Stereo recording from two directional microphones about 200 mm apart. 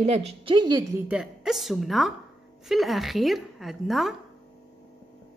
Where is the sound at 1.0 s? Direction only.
5° right (ahead or behind).